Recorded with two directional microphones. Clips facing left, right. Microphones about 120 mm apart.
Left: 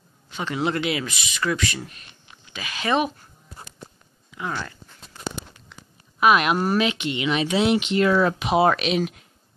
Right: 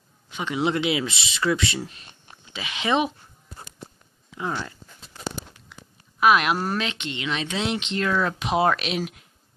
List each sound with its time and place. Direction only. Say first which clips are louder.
0.4 s speech: right 1 dB; 15° right (ahead or behind)
4.4 s speech: right 1 dB; 15° right (ahead or behind)
5.7 s speech: even; centre (ahead or behind)